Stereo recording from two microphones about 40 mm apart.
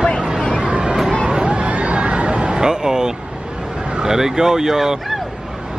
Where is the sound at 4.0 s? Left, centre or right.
Centre.